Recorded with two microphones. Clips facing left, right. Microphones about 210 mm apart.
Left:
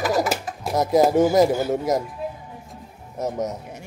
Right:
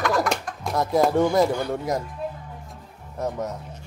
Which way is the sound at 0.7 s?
20° left (ahead or behind).